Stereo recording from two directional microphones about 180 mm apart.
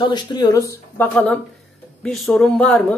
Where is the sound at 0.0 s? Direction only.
25° left (ahead or behind).